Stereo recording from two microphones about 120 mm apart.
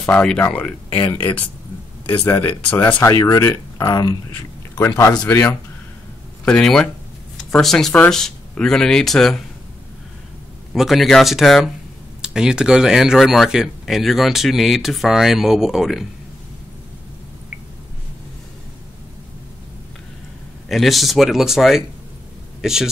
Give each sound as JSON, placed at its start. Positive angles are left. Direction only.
{"t": 0.0, "sound": "speech", "side_deg": 10}
{"t": 2.3, "sound": "speech", "side_deg": 20}
{"t": 4.7, "sound": "speech", "side_deg": 20}
{"t": 6.4, "sound": "speech", "side_deg": 5}
{"t": 10.7, "sound": "speech", "side_deg": 0}
{"t": 20.6, "sound": "a man's voice", "side_deg": 0}